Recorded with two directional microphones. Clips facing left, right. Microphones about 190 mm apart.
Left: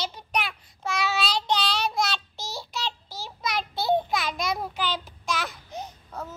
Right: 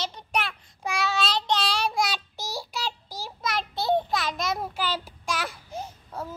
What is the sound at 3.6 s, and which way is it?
Child singing, centre (ahead or behind).